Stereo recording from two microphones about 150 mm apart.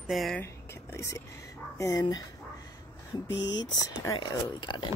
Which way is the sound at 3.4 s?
25° left (ahead or behind).